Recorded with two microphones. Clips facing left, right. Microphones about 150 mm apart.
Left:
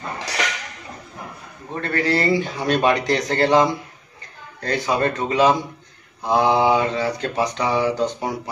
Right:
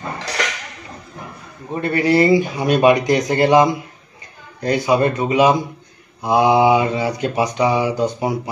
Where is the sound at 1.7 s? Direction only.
15° right (ahead or behind).